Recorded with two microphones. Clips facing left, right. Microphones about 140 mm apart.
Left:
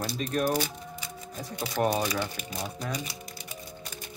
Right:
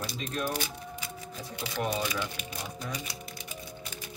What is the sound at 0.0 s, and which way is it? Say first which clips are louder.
Speech: left 5 dB; 40° left (ahead or behind).